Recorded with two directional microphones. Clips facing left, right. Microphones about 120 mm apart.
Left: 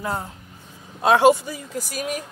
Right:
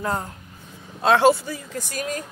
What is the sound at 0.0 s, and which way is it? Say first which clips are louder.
A woman's voice: right 1 dB; 10° left (ahead or behind).